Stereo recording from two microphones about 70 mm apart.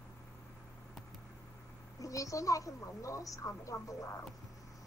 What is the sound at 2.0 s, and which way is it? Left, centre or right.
A woman's voice, left.